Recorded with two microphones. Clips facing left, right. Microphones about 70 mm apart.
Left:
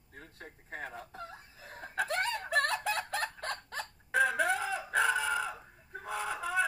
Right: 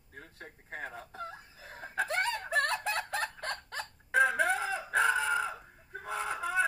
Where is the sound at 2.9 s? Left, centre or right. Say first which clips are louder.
Right 1 dB; centre.